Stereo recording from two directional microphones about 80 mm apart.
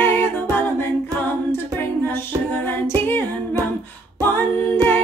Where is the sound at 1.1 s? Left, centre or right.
Left.